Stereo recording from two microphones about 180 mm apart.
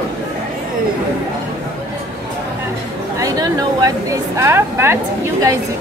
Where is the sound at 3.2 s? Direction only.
20° right (ahead or behind).